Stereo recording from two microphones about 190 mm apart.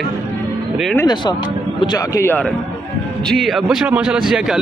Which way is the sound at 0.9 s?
20° left (ahead or behind).